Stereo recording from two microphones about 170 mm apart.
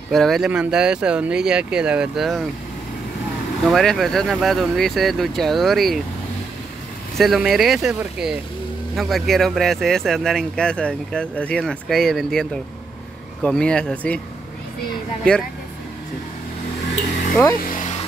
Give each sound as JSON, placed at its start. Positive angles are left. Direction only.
{"t": 0.1, "sound": "speech", "side_deg": 0}
{"t": 3.6, "sound": "speech", "side_deg": 0}
{"t": 7.2, "sound": "speech", "side_deg": 0}
{"t": 15.3, "sound": "speech", "side_deg": 5}
{"t": 17.6, "sound": "vehicle", "side_deg": 50}